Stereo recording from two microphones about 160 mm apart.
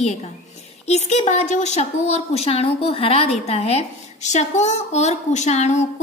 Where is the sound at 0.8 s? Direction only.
45° left (ahead or behind).